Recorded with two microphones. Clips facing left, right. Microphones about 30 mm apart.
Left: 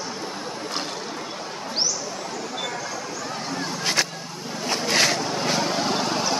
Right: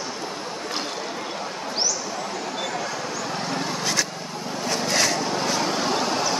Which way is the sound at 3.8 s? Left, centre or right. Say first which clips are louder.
Left 1 dB; left.